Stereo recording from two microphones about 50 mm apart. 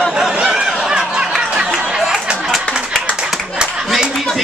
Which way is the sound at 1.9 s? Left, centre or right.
Centre.